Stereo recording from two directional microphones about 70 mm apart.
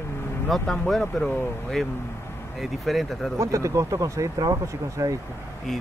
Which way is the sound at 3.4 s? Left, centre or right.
Right.